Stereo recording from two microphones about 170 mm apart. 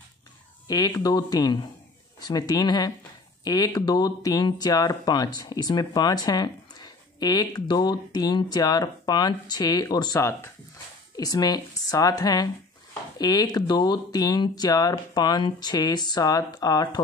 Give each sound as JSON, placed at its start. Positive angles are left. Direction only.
{"t": 0.7, "sound": "speech", "side_deg": 20}